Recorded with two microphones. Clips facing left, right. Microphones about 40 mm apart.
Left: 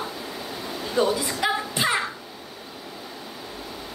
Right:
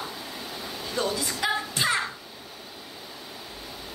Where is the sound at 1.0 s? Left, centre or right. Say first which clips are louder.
Left 5 dB; centre.